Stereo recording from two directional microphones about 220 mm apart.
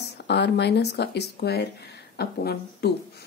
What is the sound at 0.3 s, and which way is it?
Speech, 50° left (ahead or behind).